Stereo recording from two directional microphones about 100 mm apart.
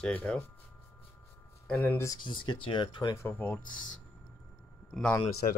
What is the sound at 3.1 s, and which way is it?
Speech, 20° left (ahead or behind).